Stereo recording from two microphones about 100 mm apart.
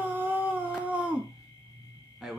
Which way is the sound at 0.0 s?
20° right (ahead or behind).